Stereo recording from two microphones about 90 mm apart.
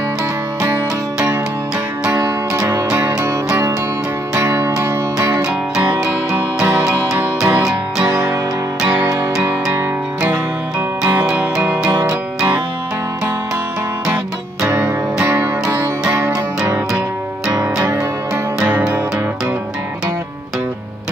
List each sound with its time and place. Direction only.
2.0 s music: 35° right (ahead or behind)
4.4 s music: 30° right (ahead or behind)
7.2 s music: 20° right (ahead or behind)
9.1 s music: 30° right (ahead or behind)
11.2 s music: 10° right (ahead or behind)
11.9 s music: 35° right (ahead or behind)
14.6 s music: 30° right (ahead or behind)
16.6 s music: 25° right (ahead or behind)
17.5 s music: 40° right (ahead or behind)